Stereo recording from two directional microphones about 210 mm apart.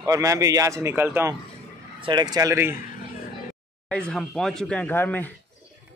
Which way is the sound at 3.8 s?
5° left (ahead or behind).